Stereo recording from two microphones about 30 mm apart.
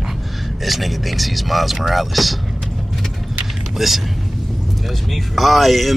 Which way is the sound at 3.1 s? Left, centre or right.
Centre.